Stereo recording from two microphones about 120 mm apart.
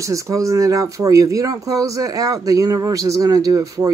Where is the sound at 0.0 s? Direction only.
25° right (ahead or behind).